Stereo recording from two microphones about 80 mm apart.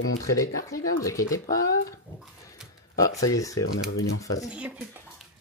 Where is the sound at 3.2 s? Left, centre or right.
Left.